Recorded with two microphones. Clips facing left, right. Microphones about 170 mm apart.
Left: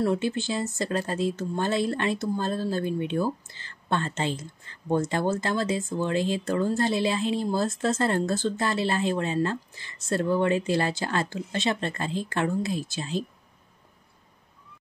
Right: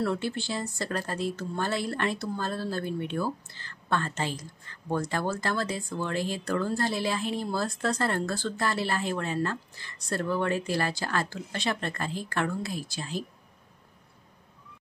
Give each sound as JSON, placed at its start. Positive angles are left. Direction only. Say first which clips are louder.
{"t": 0.0, "sound": "speech", "louder": "left 4 dB", "side_deg": 15}